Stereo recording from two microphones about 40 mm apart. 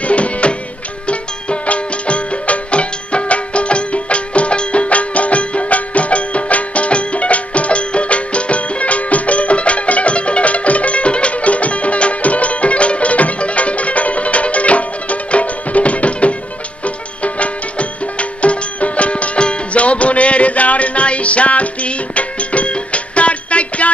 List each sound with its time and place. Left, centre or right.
0.0 s music: left